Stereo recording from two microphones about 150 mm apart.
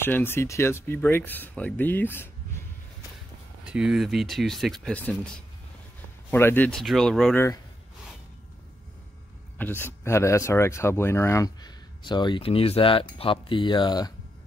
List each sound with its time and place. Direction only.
0.0 s speech: 15° left (ahead or behind)
3.6 s speech: 5° right (ahead or behind); by 6.7 s 15° left (ahead or behind)
6.7 s speech: centre (ahead or behind)
7.3 s speech: 20° left (ahead or behind)
9.6 s speech: 15° left (ahead or behind); by 14.1 s 30° left (ahead or behind)